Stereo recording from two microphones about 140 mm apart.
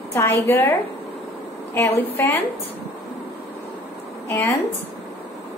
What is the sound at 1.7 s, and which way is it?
Speech, 15° left (ahead or behind).